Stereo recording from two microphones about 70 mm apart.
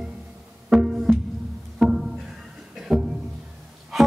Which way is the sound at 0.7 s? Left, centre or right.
Centre.